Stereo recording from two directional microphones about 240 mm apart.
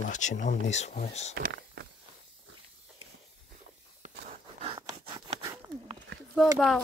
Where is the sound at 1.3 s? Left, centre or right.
Right.